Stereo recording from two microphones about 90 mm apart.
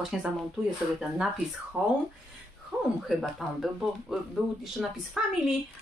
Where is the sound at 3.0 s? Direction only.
Centre (ahead or behind).